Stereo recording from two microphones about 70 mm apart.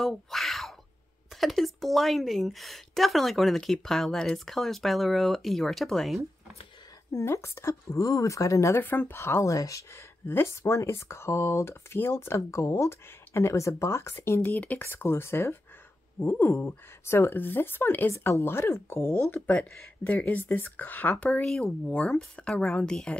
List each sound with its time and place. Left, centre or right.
0.0 s a sound: centre
1.4 s a woman's voice: centre
7.1 s speech: left
8.8 s speech: left
10.2 s speech: left
14.4 s speech: left
21.5 s speech: centre